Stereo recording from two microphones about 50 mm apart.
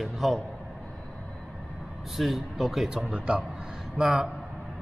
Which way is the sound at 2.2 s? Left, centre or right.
Centre.